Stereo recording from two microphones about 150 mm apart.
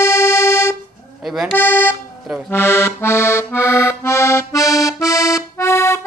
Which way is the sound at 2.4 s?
15° left (ahead or behind).